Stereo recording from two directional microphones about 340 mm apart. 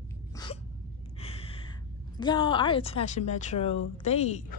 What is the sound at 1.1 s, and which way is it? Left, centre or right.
Gasp, centre.